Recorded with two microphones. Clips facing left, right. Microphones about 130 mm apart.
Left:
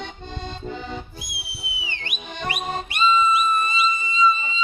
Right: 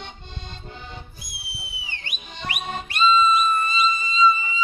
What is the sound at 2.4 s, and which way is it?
Music, 35° left (ahead or behind).